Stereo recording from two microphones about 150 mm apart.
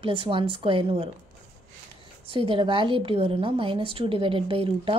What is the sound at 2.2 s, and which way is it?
A woman's voice, 35° right (ahead or behind).